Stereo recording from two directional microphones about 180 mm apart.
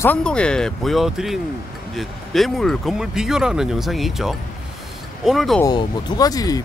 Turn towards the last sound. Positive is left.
turn(degrees=20)  # may be behind; listen again after turning